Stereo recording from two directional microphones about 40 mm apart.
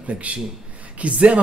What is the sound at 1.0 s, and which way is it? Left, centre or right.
Speech, right.